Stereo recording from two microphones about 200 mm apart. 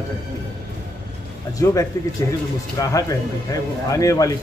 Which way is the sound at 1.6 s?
15° left (ahead or behind).